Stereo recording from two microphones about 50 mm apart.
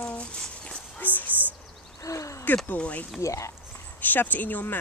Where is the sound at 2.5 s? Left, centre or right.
Left.